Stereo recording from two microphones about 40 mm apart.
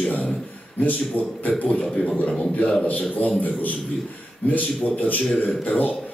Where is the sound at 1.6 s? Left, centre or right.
Left.